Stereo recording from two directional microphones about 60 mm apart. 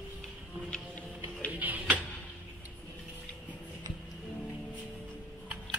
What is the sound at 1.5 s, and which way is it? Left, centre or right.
Tick-tock, right.